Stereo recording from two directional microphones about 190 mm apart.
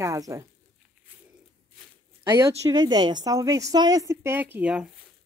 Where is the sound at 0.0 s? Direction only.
15° right (ahead or behind).